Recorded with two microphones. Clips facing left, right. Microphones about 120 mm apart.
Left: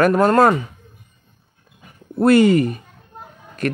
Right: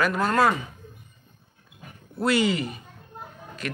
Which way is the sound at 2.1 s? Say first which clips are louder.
Left 10 dB; 50° left (ahead or behind).